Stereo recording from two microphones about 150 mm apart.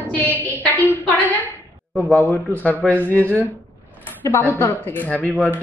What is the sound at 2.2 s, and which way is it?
Speech, 15° left (ahead or behind).